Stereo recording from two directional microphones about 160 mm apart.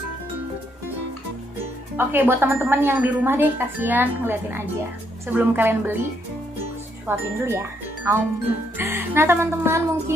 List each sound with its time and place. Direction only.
2.0 s a woman's voice: 15° right (ahead or behind)
7.1 s a woman's voice: 15° right (ahead or behind)